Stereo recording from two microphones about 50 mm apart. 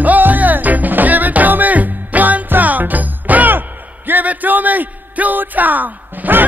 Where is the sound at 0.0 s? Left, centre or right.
Right.